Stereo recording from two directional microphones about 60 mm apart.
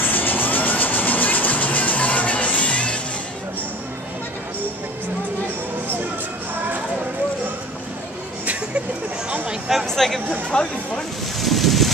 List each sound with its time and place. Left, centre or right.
0.0 s music: left
9.5 s a sound: centre
9.8 s speech: centre
11.4 s boat: centre